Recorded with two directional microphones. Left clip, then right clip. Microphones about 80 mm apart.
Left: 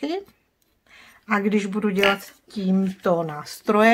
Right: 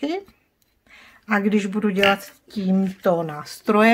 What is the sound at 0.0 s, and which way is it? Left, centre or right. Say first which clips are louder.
Speech: right 1 dB; centre.